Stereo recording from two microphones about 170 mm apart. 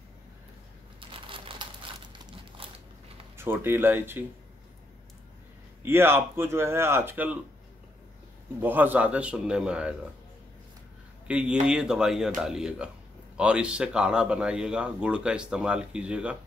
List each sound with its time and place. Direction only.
1.1 s a sound: 30° right (ahead or behind)
2.2 s crumpling: 30° right (ahead or behind)
3.3 s a man's voice: 15° right (ahead or behind)
5.8 s a man's voice: 15° right (ahead or behind)
8.6 s a man's voice: 10° right (ahead or behind)
11.2 s a man's voice: 5° right (ahead or behind)